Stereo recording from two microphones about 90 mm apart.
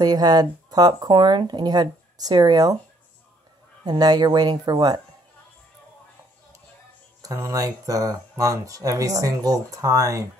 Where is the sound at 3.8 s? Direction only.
50° right (ahead or behind).